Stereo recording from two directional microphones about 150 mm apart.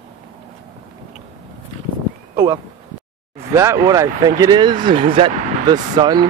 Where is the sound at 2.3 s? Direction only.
25° right (ahead or behind).